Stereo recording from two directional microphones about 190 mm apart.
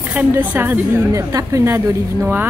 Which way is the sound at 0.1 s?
10° right (ahead or behind).